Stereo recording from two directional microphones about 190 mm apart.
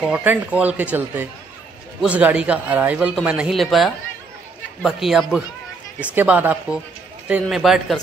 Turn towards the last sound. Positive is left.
turn(degrees=0)  # may be behind; listen again after turning